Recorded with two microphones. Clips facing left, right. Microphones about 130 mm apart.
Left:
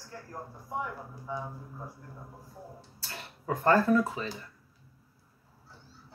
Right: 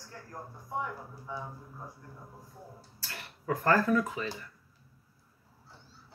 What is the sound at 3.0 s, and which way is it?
Speech, 25° left (ahead or behind).